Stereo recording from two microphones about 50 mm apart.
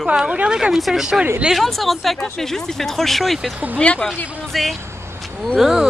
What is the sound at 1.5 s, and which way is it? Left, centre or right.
Speech, centre.